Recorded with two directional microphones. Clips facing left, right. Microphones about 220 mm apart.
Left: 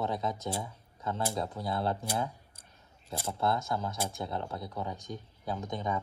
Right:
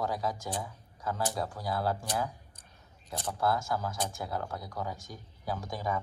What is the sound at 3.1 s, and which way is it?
Speech, 25° left (ahead or behind).